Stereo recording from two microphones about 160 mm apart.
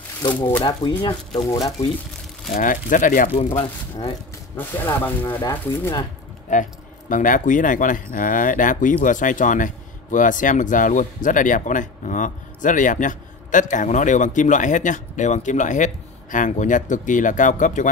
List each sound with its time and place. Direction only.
0.6 s speech: 30° left (ahead or behind)
2.5 s speech: 55° left (ahead or behind)
4.6 s speech: 10° left (ahead or behind)
6.5 s speech: 50° left (ahead or behind)